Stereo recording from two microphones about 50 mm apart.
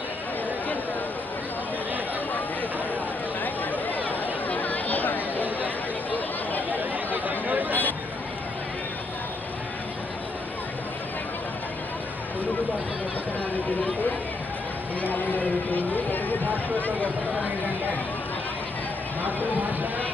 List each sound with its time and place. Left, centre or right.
3.7 s chatter: left
6.7 s chatter: right
15.0 s speech: left